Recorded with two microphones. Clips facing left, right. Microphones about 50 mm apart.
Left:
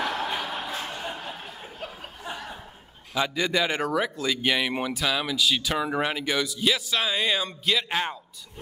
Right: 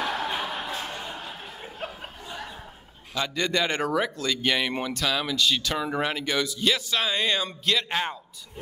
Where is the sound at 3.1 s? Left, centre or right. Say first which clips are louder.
Left 1 dB; centre.